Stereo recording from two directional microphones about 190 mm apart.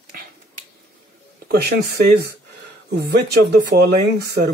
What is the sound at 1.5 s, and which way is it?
Speech, 55° right (ahead or behind).